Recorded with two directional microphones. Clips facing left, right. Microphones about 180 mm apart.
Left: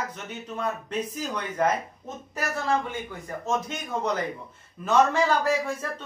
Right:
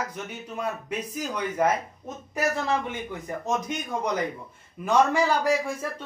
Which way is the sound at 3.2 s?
15° right (ahead or behind).